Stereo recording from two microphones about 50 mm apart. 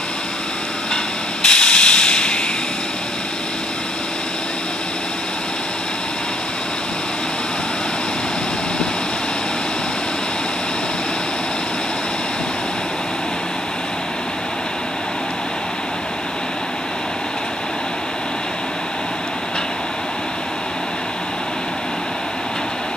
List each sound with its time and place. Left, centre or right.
1.4 s hiss: centre